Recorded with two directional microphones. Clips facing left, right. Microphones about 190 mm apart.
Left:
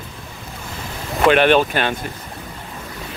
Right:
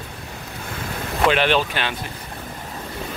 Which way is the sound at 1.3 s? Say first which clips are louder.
Left 6 dB; 55° left (ahead or behind).